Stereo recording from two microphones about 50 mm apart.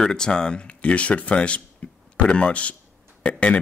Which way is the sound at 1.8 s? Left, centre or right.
Left.